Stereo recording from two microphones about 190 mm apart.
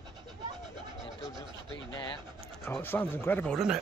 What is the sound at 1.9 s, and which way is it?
Speech, 25° left (ahead or behind).